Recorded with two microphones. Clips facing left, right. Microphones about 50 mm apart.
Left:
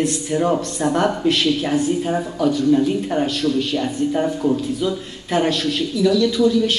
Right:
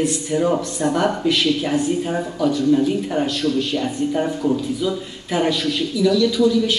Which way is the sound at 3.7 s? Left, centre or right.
Centre.